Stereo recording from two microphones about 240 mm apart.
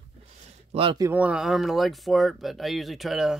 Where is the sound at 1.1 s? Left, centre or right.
Centre.